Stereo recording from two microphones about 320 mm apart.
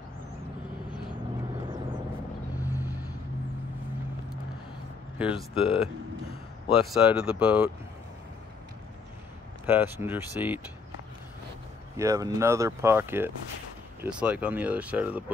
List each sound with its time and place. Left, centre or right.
2.5 s vehicle: centre
5.5 s speech: centre
6.9 s speech: centre
9.7 s speech: centre
12.0 s speech: centre